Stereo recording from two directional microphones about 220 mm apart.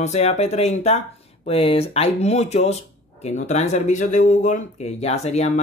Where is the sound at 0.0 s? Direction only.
30° left (ahead or behind).